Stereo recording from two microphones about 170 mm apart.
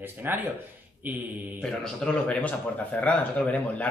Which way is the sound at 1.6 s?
5° left (ahead or behind).